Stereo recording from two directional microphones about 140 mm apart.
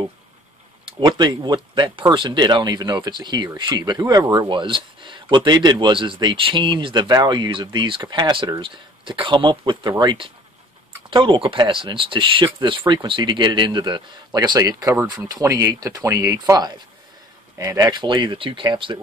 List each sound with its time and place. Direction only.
0.8 s speech: 35° right (ahead or behind)